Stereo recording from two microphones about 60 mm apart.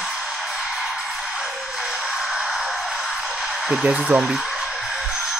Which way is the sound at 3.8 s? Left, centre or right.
Centre.